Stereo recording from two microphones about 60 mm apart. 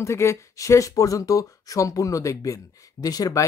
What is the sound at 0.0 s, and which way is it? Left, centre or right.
Speech, left.